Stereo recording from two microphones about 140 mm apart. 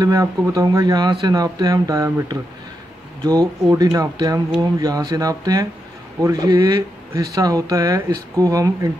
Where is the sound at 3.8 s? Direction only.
25° right (ahead or behind).